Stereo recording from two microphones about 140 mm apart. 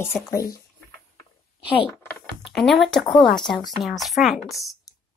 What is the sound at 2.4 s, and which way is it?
A woman's voice, centre (ahead or behind).